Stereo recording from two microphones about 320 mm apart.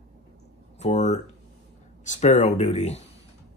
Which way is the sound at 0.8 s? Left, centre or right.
Left.